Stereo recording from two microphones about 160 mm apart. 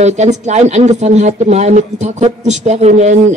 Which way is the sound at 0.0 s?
45° right (ahead or behind).